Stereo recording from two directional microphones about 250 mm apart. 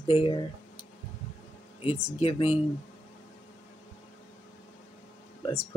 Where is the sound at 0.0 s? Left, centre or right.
Left.